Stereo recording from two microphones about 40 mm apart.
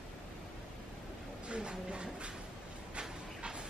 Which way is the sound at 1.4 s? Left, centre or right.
Right.